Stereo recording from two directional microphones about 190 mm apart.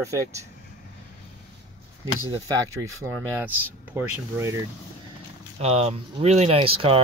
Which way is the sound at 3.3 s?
10° right (ahead or behind).